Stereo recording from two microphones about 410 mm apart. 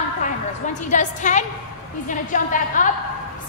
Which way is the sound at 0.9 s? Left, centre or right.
Centre.